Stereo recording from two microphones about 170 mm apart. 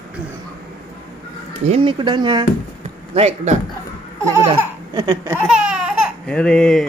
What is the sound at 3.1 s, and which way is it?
Speech, 40° right (ahead or behind).